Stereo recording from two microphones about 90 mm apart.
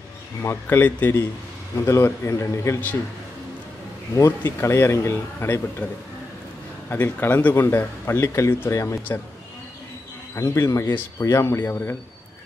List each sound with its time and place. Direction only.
0.4 s speech: 25° left (ahead or behind)
1.8 s speech: 30° left (ahead or behind)
4.4 s speech: 30° left (ahead or behind)
6.9 s speech: 25° left (ahead or behind)
10.3 s speech: 35° left (ahead or behind)
10.9 s speech: 25° left (ahead or behind)